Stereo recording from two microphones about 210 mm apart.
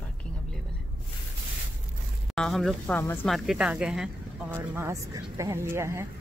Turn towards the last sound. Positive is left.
turn(degrees=-10)  # may be behind; listen again after turning